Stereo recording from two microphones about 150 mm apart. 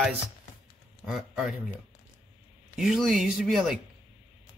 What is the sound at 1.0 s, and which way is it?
Speech, 5° right (ahead or behind).